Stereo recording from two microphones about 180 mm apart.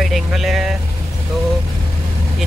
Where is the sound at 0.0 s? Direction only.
Centre (ahead or behind).